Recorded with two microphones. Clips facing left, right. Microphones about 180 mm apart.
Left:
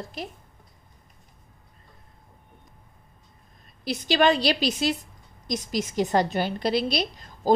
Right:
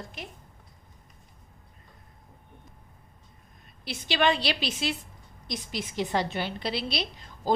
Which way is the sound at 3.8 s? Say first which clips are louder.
Left 5 dB; 40° left (ahead or behind).